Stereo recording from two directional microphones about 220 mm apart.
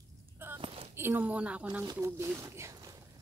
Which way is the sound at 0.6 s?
25° right (ahead or behind).